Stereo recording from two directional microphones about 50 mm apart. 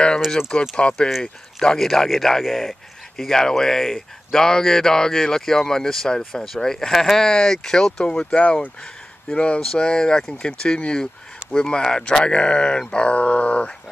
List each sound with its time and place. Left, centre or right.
0.5 s speech: left
1.9 s speech: centre
3.2 s speech: centre
8.0 s speech: centre